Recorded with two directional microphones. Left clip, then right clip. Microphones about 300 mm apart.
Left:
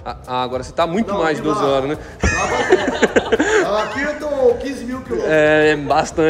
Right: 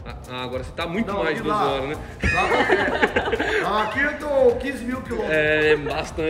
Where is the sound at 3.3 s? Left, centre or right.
Centre.